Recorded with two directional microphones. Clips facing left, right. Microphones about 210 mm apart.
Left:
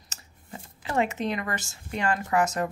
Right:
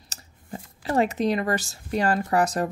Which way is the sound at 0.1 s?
35° right (ahead or behind).